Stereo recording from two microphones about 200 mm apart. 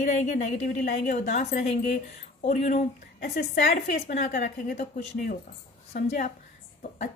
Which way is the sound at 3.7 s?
35° left (ahead or behind).